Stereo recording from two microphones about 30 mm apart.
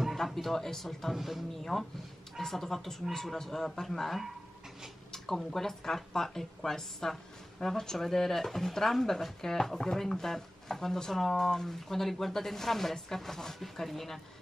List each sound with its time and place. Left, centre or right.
0.2 s a sound: centre
0.6 s speech: centre
1.1 s speech: centre
1.5 s speech: centre
8.0 s speech: centre